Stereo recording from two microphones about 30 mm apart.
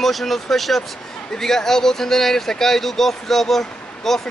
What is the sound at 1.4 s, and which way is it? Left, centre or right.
Speech, centre.